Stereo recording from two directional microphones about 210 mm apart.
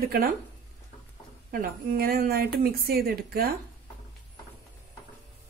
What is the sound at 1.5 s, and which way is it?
Speech, 45° right (ahead or behind).